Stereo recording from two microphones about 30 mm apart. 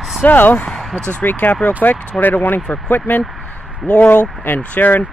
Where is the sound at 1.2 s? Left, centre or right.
Left.